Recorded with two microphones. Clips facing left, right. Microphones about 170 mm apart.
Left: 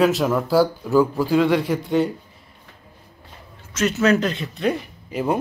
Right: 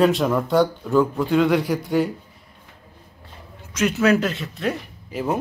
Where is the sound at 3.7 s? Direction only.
10° right (ahead or behind).